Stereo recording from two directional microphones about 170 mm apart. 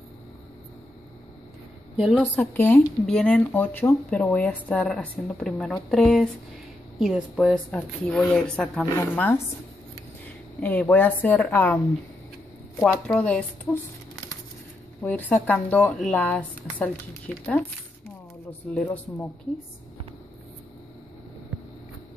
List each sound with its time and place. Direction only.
2.0 s a woman's voice: 5° right (ahead or behind)
2.3 s speech: 10° left (ahead or behind)
7.7 s speech: 5° left (ahead or behind)
8.8 s a woman's voice: 20° left (ahead or behind)
13.0 s speech: 5° left (ahead or behind)
15.0 s speech: 10° left (ahead or behind)